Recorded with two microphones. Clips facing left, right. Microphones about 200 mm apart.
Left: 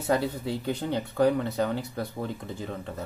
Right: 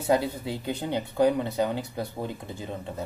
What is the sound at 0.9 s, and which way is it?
Speech, 15° right (ahead or behind).